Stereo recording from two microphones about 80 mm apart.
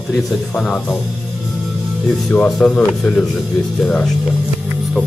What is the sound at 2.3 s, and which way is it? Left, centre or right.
Speech, centre.